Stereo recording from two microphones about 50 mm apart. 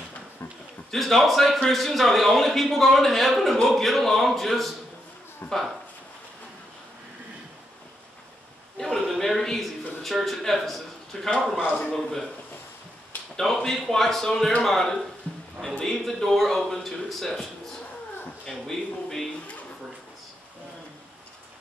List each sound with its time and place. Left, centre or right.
0.9 s a man's voice: centre
5.4 s a sound: left
8.7 s a sound: centre
9.1 s a man's voice: centre
11.6 s a man's voice: left
11.9 s a man's voice: centre
13.4 s a man's voice: centre
18.5 s a man's voice: centre